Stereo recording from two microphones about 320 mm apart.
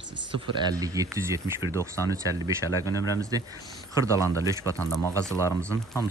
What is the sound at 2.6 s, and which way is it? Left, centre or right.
Speech, centre.